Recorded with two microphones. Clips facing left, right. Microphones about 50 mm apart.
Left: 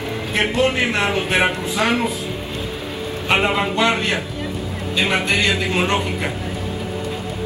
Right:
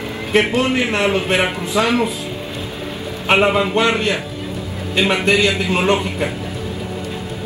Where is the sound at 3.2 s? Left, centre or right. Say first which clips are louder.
Right 4 dB; right.